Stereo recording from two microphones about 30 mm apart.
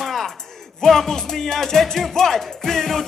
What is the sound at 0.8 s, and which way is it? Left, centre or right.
Music, centre.